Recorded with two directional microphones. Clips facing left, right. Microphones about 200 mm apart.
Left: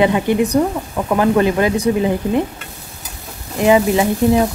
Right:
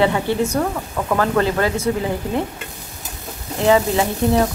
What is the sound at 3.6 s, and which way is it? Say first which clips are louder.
Speech: left 3 dB; 15° left (ahead or behind).